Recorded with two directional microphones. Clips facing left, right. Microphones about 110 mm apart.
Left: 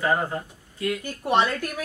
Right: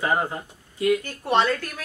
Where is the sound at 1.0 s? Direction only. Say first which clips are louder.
Even; 15° left (ahead or behind).